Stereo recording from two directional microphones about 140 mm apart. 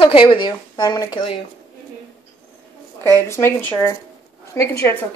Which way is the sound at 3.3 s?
15° left (ahead or behind).